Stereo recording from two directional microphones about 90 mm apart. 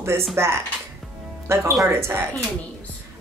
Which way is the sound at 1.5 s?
30° right (ahead or behind).